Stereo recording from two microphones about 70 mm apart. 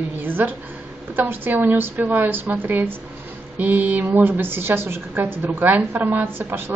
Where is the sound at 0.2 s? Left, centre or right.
Right.